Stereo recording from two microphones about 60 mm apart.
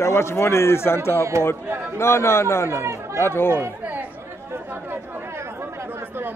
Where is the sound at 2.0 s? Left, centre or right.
Left.